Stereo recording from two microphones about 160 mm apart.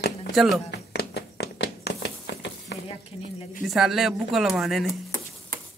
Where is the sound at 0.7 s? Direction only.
90° left.